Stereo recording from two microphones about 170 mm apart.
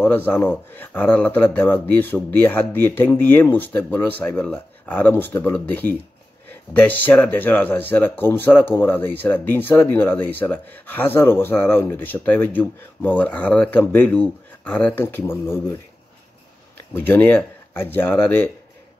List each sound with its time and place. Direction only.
0.0 s speech: 10° left (ahead or behind)
16.9 s speech: 10° left (ahead or behind)